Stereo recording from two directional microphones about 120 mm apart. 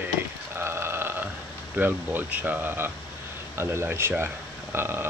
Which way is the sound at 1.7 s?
15° right (ahead or behind).